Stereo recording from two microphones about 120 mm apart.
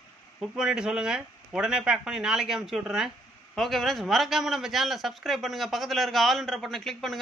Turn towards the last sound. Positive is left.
turn(degrees=0)  # may be behind; listen again after turning